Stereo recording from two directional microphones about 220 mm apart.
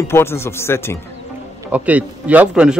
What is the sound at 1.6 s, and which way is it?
A man's voice, 5° right (ahead or behind).